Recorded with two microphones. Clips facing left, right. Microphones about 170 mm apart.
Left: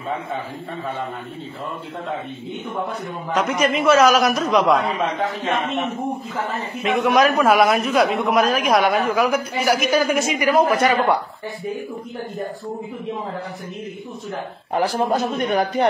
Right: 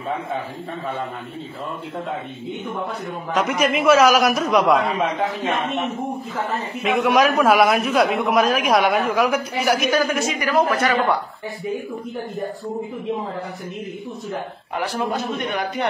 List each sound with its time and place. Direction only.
3.3 s a man's voice: centre (ahead or behind)
6.8 s a man's voice: centre (ahead or behind)
10.1 s speech: 15° left (ahead or behind)
14.7 s speech: 35° left (ahead or behind)